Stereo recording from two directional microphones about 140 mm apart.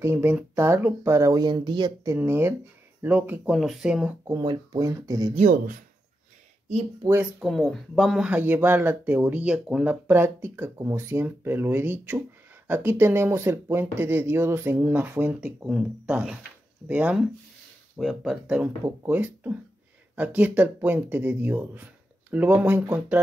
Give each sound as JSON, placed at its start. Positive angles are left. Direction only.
{"t": 0.0, "sound": "speech", "side_deg": -15}
{"t": 2.1, "sound": "speech", "side_deg": -15}
{"t": 4.3, "sound": "speech", "side_deg": -25}
{"t": 5.3, "sound": "speech", "side_deg": -60}
{"t": 7.1, "sound": "speech", "side_deg": -15}
{"t": 7.4, "sound": "speech", "side_deg": 0}